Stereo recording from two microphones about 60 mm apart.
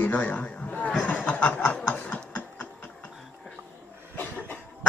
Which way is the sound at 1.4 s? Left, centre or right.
Left.